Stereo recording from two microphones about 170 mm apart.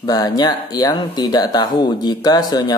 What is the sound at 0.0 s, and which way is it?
Speech, 20° left (ahead or behind).